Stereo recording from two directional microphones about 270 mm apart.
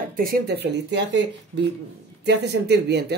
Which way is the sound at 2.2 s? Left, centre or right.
Right.